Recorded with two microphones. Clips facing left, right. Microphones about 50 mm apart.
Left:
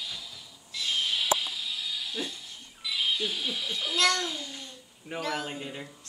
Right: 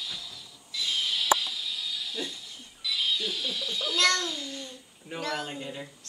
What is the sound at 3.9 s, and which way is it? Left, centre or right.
Babbling, centre.